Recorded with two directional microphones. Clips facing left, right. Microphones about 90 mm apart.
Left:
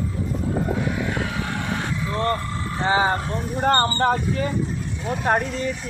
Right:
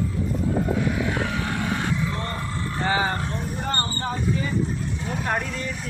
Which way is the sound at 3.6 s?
50° left (ahead or behind).